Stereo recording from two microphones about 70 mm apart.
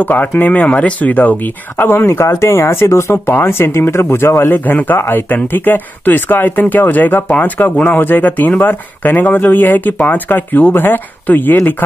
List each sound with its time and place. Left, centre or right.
0.0 s speech: left